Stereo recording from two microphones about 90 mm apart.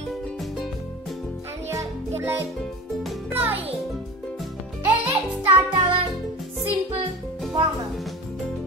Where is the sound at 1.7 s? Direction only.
30° right (ahead or behind).